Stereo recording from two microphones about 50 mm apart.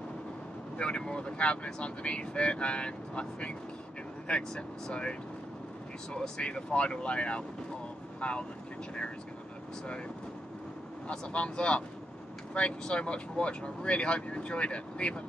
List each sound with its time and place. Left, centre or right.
0.7 s speech: left
6.1 s speech: centre
11.1 s speech: left